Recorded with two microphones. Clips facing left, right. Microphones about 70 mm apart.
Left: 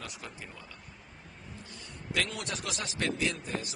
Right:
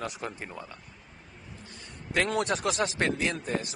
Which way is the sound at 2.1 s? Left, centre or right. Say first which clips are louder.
Right 7 dB; right.